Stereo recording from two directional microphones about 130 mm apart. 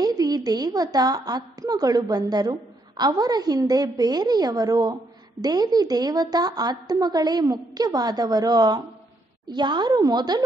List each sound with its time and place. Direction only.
0.0 s a woman's voice: 30° right (ahead or behind)